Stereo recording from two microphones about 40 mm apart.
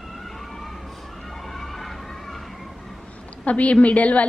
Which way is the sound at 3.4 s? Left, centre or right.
Left.